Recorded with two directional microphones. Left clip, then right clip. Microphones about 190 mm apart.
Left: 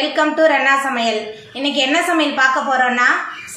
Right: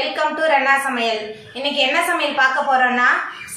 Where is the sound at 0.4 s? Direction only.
40° left (ahead or behind).